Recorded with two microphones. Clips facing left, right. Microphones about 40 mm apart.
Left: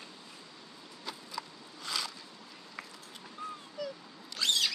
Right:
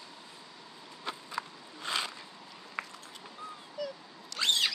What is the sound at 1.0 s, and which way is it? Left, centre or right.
Biting, right.